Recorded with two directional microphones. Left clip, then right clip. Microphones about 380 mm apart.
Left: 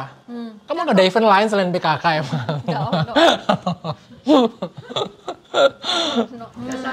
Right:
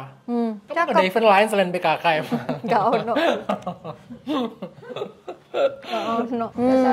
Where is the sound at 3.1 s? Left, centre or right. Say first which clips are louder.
Left 7 dB; left.